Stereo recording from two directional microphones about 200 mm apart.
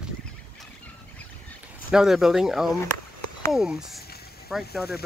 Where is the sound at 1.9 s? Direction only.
5° right (ahead or behind).